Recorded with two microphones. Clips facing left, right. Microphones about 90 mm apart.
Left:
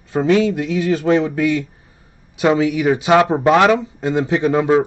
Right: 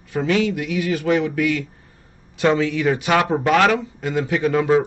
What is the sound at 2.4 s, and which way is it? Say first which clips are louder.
Speech: left 3 dB; 15° left (ahead or behind).